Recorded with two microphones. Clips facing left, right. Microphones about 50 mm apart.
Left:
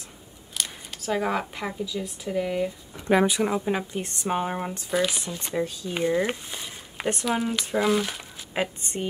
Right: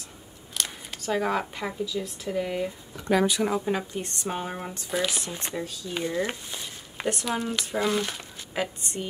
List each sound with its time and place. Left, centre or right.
0.6 s speech: centre
3.1 s a woman's voice: left; by 5.2 s centre
5.4 s a woman's voice: centre
6.5 s a sound: centre
7.2 s speech: centre
8.5 s a woman's voice: left